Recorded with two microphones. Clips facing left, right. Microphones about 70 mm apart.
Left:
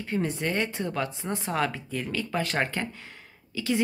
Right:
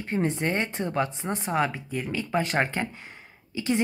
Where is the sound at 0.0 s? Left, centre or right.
Right.